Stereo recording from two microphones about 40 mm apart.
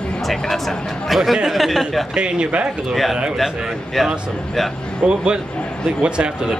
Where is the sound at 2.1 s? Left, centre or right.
Right.